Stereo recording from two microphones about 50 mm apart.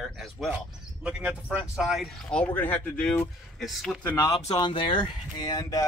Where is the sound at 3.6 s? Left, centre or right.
Centre.